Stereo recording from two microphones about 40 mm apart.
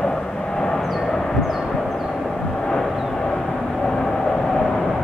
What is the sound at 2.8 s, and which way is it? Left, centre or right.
Vehicle, centre.